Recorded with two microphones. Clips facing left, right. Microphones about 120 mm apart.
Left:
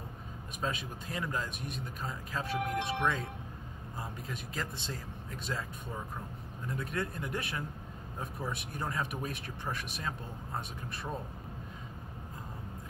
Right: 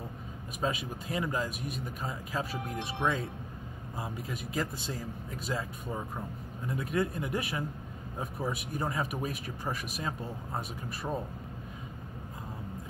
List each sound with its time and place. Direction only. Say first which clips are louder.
0.6 s speech: right 4 dB; 5° right (ahead or behind)
2.6 s speech: left 4 dB; 75° left (ahead or behind)
4.0 s speech: right 4 dB; 5° right (ahead or behind)